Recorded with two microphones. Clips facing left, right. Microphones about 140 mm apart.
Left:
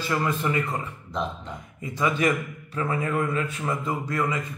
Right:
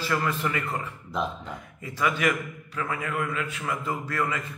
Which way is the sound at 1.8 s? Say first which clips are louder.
Left 2 dB; 25° left (ahead or behind).